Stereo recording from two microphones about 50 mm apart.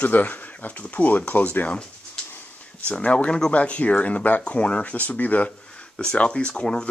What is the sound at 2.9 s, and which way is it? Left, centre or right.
Speech, left.